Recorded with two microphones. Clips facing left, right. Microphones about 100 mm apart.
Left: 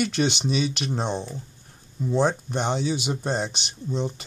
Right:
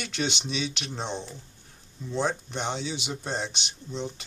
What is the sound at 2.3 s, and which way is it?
Speech, 5° left (ahead or behind).